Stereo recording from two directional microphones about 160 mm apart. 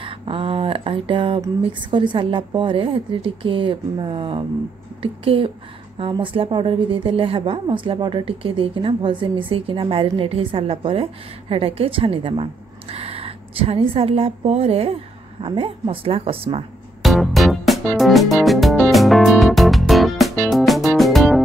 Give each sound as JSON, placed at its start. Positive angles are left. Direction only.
{"t": 0.0, "sound": "a sound", "side_deg": -35}
{"t": 1.6, "sound": "a woman's voice", "side_deg": -30}
{"t": 17.0, "sound": "music", "side_deg": 0}